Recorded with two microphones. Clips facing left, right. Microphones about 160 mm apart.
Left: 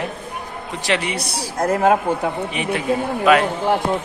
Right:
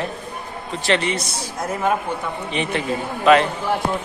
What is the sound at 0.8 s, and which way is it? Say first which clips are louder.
Speech: right 2 dB; 10° left (ahead or behind).